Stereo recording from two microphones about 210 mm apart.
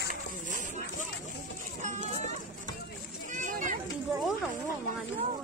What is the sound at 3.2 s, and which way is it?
Children playing, 40° right (ahead or behind).